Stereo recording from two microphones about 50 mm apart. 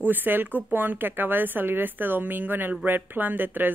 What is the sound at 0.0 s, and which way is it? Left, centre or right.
A woman's voice, right.